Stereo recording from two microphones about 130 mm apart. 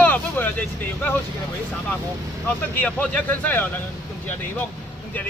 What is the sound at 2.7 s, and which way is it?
Speech, 10° left (ahead or behind).